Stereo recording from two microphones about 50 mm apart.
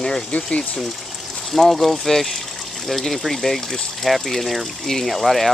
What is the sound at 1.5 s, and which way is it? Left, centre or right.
Speech, centre.